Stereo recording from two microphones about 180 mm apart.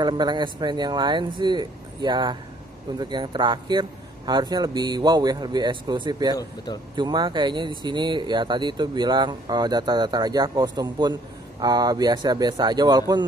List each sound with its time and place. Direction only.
0.0 s speech: 25° right (ahead or behind)
6.3 s speech: 25° left (ahead or behind)
7.0 s speech: 25° right (ahead or behind)